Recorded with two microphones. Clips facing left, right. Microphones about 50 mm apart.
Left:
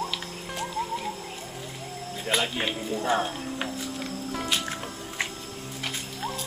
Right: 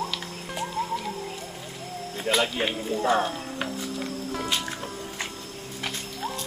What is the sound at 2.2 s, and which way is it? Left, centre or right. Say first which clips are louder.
Speech: right 2 dB; centre.